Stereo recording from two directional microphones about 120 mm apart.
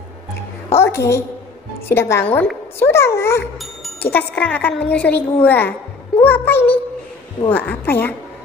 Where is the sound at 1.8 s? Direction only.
20° left (ahead or behind).